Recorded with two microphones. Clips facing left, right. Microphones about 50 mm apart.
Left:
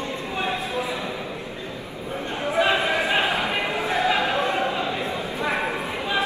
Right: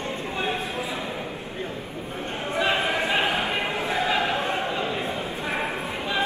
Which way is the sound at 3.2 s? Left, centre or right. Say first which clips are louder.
Left 1 dB; left.